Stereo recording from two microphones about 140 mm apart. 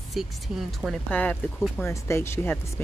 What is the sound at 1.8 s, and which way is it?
Speech, 20° left (ahead or behind).